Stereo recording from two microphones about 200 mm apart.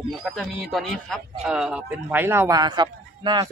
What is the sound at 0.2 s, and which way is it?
Speech, centre (ahead or behind).